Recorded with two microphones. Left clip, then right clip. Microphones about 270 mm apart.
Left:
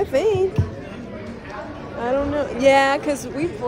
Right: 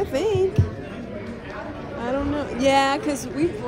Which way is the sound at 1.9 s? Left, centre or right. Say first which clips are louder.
Left 5 dB; centre.